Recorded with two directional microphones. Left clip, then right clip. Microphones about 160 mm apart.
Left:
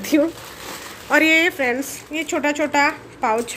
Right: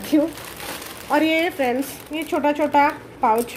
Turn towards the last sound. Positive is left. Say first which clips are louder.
# right 2 dB
turn(degrees=-5)  # may be behind; listen again after turning